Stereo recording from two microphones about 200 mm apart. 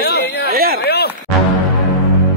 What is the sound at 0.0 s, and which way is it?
Chatter, 50° left (ahead or behind).